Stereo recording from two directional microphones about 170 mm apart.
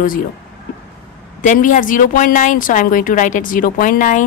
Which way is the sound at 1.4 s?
45° left (ahead or behind).